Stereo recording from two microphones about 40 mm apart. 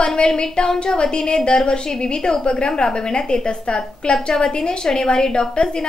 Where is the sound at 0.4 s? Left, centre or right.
Left.